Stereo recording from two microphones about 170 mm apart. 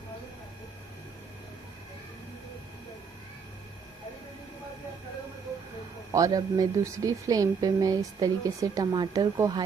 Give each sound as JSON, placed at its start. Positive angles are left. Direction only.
{"t": 6.1, "sound": "speech", "side_deg": -20}